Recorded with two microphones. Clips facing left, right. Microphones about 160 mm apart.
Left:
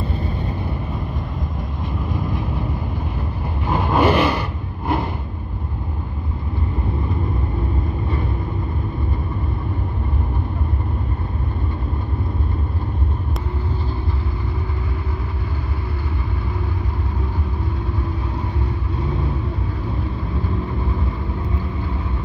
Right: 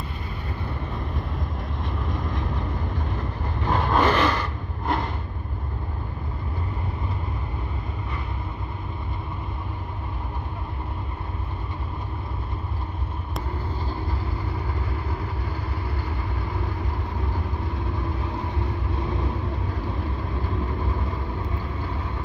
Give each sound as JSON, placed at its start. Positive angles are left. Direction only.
{"t": 2.0, "sound": "vehicle", "side_deg": 5}
{"t": 3.6, "sound": "vehicle", "side_deg": 5}